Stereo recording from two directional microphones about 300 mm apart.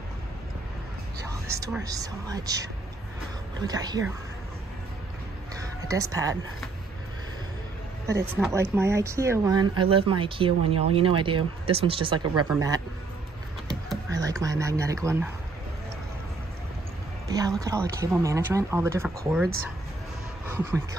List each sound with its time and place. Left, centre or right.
1.3 s speech: centre
5.9 s speech: centre
8.4 s speech: centre
14.1 s a sound: centre
17.3 s speech: centre